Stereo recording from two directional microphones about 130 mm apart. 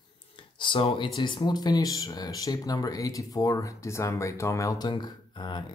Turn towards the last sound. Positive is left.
turn(degrees=35)  # may be behind; listen again after turning